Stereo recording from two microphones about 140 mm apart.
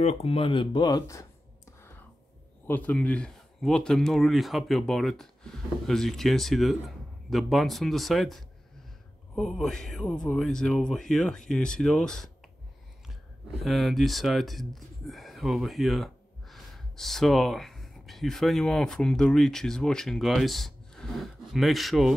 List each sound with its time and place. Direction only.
0.0 s speech: 45° left (ahead or behind); by 1.2 s 25° left (ahead or behind)
1.8 s whispering: 20° left (ahead or behind)
2.6 s speech: 10° left (ahead or behind)
13.6 s speech: centre (ahead or behind)